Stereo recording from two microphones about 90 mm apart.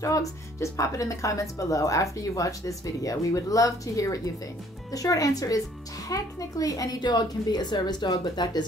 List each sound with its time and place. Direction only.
0.0 s a woman's voice: 35° left (ahead or behind); by 8.6 s 55° left (ahead or behind)